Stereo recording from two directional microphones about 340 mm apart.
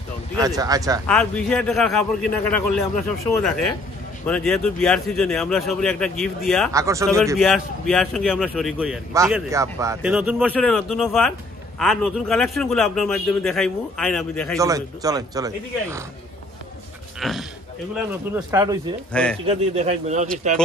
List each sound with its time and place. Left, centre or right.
0.4 s speech: centre
1.0 s a man's voice: centre
6.7 s a man's voice: centre
14.6 s speech: centre
17.2 s oink: centre
18.3 s speech: centre